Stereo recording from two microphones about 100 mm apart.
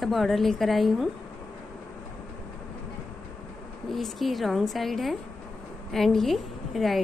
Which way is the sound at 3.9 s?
Centre (ahead or behind).